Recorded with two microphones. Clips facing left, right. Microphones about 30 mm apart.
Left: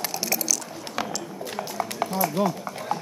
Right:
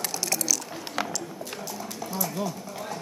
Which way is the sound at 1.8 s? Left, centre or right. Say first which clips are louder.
Left 7 dB; left.